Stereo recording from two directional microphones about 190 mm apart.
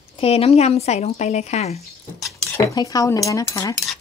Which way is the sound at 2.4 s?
15° left (ahead or behind).